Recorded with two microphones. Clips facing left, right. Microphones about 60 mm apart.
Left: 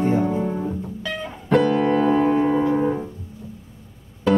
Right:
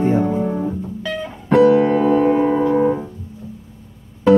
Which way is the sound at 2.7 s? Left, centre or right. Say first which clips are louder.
Right 5 dB; centre.